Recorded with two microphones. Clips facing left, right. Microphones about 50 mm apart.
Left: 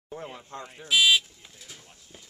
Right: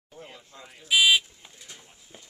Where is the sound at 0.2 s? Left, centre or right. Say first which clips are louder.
Left 1 dB; left.